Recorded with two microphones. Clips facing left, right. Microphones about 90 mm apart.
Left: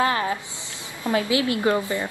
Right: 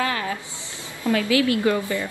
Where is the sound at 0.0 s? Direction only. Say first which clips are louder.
Left 3 dB; 30° left (ahead or behind).